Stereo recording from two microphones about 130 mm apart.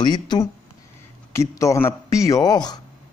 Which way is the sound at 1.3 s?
25° left (ahead or behind).